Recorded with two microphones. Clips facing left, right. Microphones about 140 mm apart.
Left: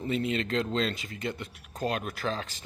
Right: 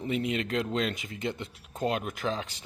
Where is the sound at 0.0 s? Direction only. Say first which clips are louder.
Even; 15° right (ahead or behind).